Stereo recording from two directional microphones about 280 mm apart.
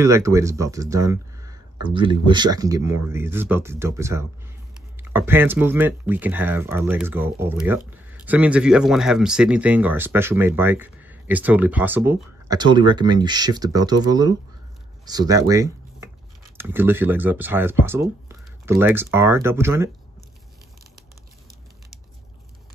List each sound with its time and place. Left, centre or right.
0.0 s speech: centre